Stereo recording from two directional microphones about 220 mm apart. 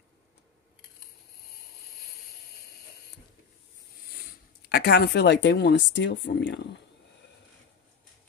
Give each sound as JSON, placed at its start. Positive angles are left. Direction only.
{"t": 4.6, "sound": "speech", "side_deg": 45}